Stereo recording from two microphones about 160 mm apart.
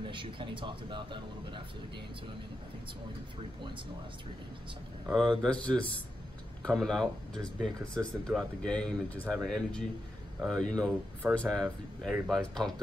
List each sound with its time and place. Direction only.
0.0 s speech: 30° right (ahead or behind)
5.1 s speech: centre (ahead or behind)